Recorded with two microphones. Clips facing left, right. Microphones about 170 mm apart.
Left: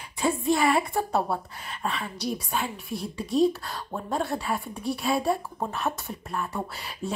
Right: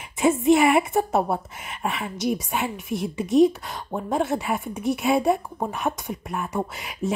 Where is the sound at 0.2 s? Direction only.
20° right (ahead or behind).